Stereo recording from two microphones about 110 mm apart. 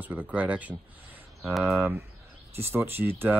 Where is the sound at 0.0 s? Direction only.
15° right (ahead or behind).